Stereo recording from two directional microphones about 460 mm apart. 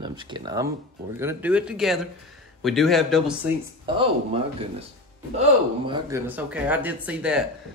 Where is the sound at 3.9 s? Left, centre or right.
Centre.